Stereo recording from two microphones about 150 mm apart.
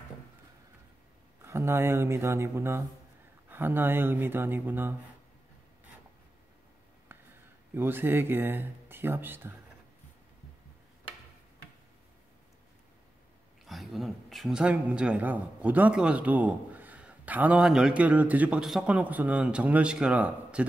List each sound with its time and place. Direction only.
1.4 s a man's voice: 15° right (ahead or behind)
7.7 s a man's voice: 15° right (ahead or behind)
13.7 s a man's voice: centre (ahead or behind)